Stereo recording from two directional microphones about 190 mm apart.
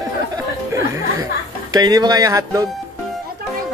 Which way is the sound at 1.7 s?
20° right (ahead or behind).